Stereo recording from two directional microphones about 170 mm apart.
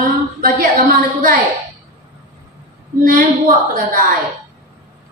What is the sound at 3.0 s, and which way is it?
Speech, 55° right (ahead or behind).